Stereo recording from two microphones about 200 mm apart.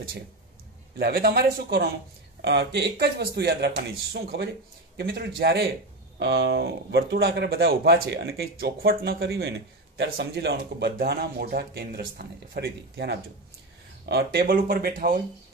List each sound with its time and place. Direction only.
0.9 s speech: 50° right (ahead or behind)